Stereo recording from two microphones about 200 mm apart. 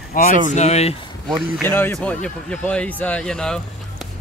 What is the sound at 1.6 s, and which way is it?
Speech, 10° left (ahead or behind).